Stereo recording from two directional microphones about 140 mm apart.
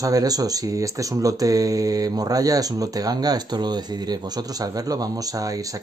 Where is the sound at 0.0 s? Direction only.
25° right (ahead or behind).